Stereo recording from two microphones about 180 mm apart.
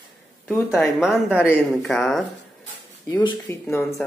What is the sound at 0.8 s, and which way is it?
Speech, centre (ahead or behind).